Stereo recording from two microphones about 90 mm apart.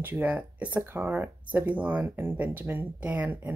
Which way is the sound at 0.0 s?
20° right (ahead or behind).